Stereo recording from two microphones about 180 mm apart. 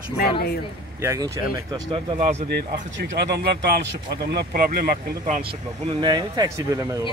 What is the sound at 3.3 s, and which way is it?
Speech, 65° right (ahead or behind).